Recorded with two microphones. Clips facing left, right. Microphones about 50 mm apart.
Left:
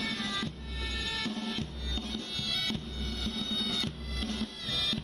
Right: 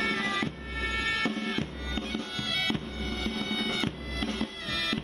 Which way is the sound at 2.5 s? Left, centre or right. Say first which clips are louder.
Right 6 dB; right.